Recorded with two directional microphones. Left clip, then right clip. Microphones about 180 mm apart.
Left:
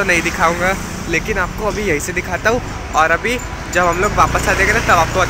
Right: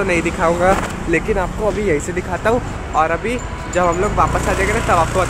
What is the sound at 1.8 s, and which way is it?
Speech, 10° right (ahead or behind).